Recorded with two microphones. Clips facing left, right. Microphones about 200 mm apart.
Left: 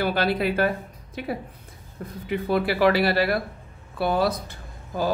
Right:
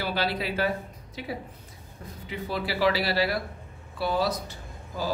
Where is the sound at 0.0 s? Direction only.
50° left (ahead or behind).